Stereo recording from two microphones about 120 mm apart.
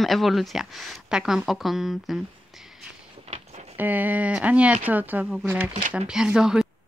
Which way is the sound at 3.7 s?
15° right (ahead or behind).